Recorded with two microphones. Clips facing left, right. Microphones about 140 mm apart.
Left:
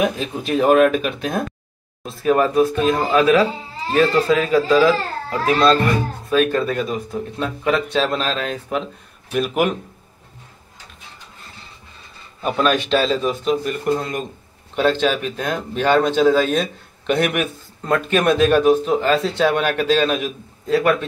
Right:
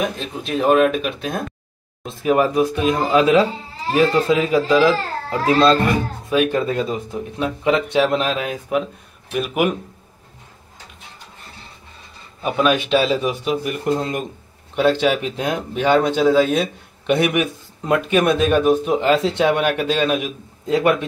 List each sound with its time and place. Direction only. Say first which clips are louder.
0.2 s speech: left 2 dB; centre (ahead or behind)
2.0 s a man's voice: even; 15° right (ahead or behind)
12.4 s a man's voice: right 1 dB; 5° right (ahead or behind)
18.9 s a man's voice: right 1 dB; 20° right (ahead or behind)